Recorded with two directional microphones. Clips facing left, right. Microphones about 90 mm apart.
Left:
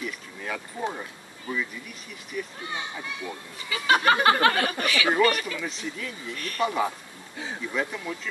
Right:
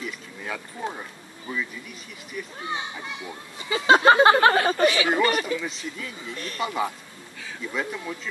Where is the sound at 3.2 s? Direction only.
25° right (ahead or behind).